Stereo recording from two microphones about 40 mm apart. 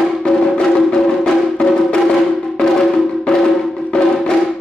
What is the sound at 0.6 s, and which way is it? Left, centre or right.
Music, centre.